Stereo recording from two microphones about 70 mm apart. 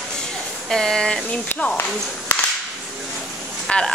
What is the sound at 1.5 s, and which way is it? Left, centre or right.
Speech, left.